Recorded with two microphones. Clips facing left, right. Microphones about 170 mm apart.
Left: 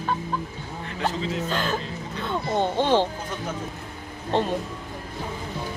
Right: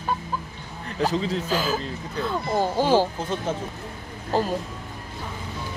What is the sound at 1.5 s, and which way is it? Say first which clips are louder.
Speech: right 2 dB; 5° right (ahead or behind).